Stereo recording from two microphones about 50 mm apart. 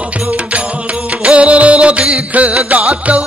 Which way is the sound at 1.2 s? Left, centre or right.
Right.